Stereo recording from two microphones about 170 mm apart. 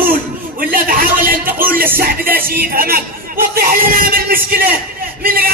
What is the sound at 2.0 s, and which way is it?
A man's voice, 65° right (ahead or behind).